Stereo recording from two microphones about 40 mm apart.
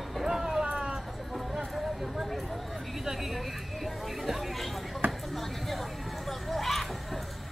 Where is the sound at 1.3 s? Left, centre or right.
Centre.